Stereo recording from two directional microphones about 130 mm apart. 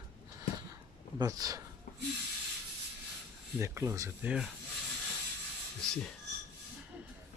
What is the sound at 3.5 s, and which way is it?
Speech, 20° right (ahead or behind).